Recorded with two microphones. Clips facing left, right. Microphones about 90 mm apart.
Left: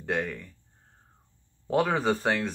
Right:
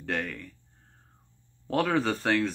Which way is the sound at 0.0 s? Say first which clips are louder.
Left 2 dB; 10° left (ahead or behind).